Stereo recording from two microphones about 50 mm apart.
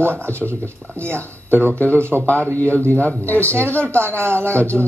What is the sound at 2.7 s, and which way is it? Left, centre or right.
Speech, left.